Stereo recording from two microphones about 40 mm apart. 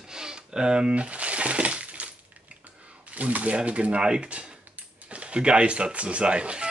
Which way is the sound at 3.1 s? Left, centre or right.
Right.